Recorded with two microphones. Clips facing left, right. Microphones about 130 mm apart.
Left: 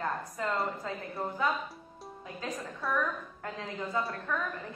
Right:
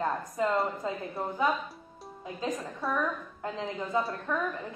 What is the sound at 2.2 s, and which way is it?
A woman's voice, 25° right (ahead or behind).